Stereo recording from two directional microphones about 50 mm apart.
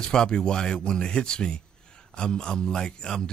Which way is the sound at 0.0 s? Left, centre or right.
Centre.